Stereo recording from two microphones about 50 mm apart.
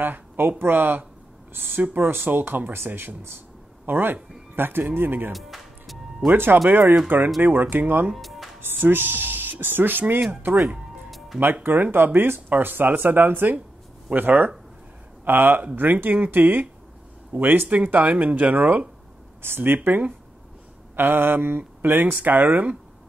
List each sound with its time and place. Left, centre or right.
0.0 s speech: right
5.3 s music: centre
6.3 s speech: right
8.2 s music: centre
8.5 s speech: right
11.1 s music: centre
11.6 s speech: right
19.4 s speech: right